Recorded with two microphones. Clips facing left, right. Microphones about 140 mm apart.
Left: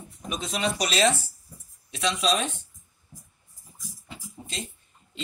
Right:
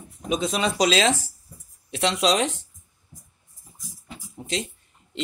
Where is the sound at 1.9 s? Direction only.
70° right (ahead or behind); by 2.6 s 90° right.